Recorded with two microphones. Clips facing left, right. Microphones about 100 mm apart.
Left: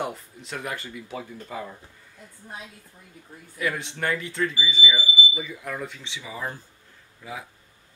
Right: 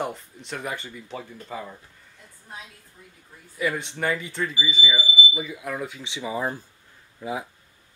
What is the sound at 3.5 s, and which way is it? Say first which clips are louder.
Speech: right 2 dB; centre (ahead or behind).